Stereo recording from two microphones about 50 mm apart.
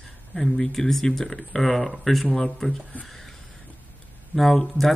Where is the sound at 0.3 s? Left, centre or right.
Centre.